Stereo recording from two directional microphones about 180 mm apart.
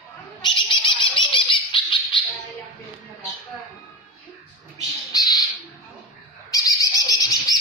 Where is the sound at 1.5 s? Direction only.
25° left (ahead or behind).